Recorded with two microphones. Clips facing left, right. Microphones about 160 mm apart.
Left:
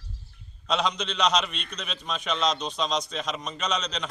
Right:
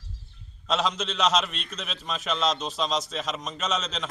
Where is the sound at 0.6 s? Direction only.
Centre (ahead or behind).